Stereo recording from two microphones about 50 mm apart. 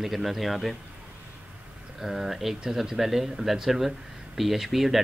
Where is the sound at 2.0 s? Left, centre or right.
Centre.